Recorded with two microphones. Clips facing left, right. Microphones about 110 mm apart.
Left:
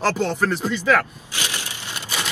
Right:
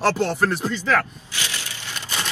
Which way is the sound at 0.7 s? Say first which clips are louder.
Left 2 dB; 15° left (ahead or behind).